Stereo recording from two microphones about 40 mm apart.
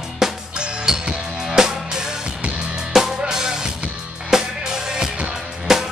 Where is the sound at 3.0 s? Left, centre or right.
Centre.